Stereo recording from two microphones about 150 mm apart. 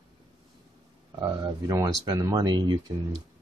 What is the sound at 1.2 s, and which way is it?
Speech, 20° right (ahead or behind).